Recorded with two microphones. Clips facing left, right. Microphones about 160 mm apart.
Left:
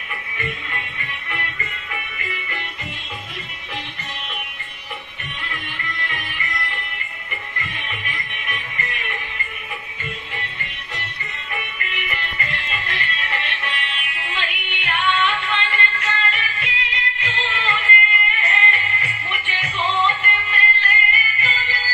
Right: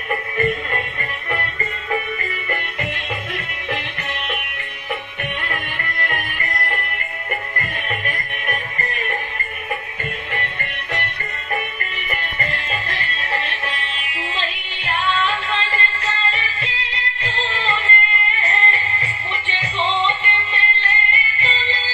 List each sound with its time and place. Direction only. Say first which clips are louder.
0.1 s music: right 10 dB; 45° right (ahead or behind)
2.5 s music: right 7 dB; 65° right (ahead or behind)
5.4 s music: right 5 dB; 55° right (ahead or behind)
10.3 s music: right 6 dB; 60° right (ahead or behind)
11.5 s music: right 4 dB; 40° right (ahead or behind)